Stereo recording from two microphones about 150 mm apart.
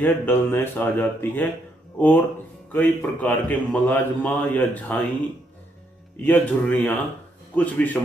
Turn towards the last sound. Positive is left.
turn(degrees=10)  # may be behind; listen again after turning